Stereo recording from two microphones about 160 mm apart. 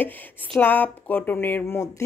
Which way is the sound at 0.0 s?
10° left (ahead or behind).